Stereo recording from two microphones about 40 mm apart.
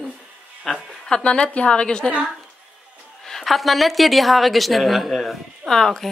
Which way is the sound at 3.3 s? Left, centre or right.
Centre.